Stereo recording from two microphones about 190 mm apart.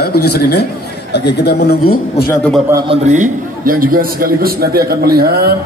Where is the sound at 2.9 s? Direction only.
40° right (ahead or behind).